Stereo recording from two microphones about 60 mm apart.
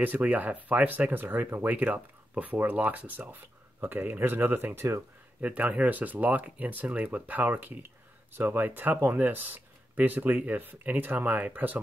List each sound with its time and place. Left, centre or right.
0.0 s speech: right
5.4 s speech: right